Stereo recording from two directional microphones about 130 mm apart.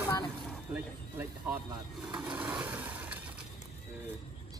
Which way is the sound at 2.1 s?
5° right (ahead or behind).